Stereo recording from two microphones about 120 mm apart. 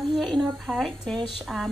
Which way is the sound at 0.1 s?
Centre (ahead or behind).